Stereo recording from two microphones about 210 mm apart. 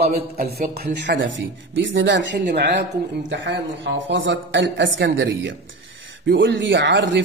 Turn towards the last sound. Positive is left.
turn(degrees=-60)  # may be behind; listen again after turning